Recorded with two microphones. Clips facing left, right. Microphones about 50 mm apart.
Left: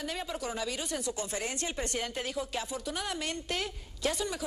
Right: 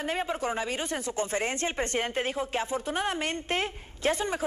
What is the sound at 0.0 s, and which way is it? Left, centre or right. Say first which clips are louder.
Speech: right 6 dB; right.